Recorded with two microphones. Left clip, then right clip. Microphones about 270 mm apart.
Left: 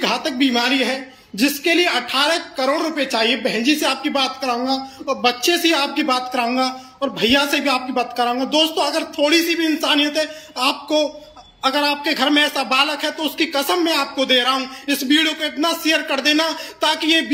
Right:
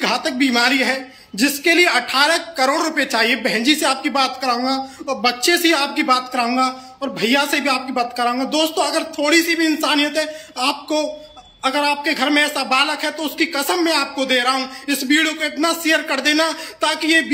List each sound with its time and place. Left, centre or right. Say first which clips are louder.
0.0 s a man's voice: right 1 dB; centre